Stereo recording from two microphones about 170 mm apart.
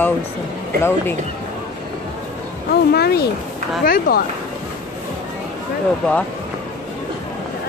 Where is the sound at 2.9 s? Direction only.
70° left (ahead or behind).